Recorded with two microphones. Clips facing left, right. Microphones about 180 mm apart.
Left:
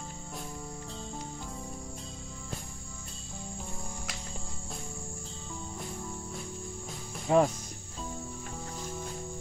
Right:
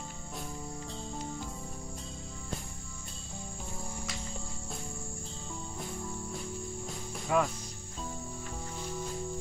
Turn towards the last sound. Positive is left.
turn(degrees=30)  # may be behind; listen again after turning